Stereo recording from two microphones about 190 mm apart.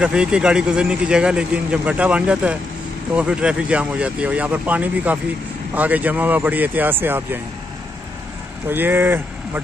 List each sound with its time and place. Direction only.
0.0 s speech: 5° right (ahead or behind)
8.6 s speech: 10° right (ahead or behind)